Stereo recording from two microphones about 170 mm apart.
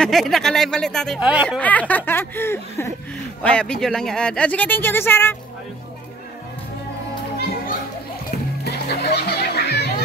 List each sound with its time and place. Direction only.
0.0 s speech: centre (ahead or behind)
1.6 s speech: 10° left (ahead or behind)
8.3 s music: 75° left (ahead or behind)